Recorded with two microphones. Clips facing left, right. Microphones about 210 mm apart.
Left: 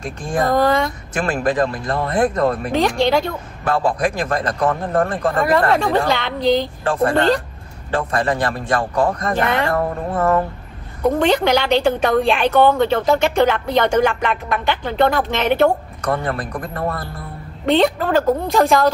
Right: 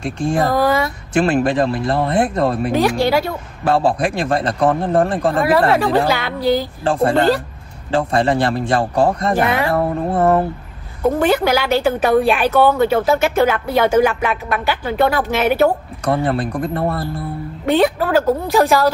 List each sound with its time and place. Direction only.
0.0 s a man's voice: 25° right (ahead or behind)
0.5 s a woman's voice: 5° right (ahead or behind)
1.1 s a man's voice: 30° right (ahead or behind)
2.7 s a woman's voice: 5° right (ahead or behind)
3.6 s a man's voice: 30° right (ahead or behind)
5.4 s a woman's voice: 5° right (ahead or behind)
6.8 s a man's voice: 30° right (ahead or behind)
7.2 s speech: 5° right (ahead or behind)
7.9 s a man's voice: 25° right (ahead or behind)
9.3 s speech: 5° right (ahead or behind)
10.1 s a man's voice: 30° right (ahead or behind)
11.1 s a woman's voice: 5° right (ahead or behind)
16.0 s a man's voice: 30° right (ahead or behind)
17.6 s a woman's voice: 5° right (ahead or behind)